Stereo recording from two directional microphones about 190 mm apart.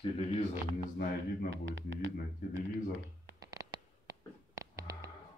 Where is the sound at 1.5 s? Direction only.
70° right (ahead or behind).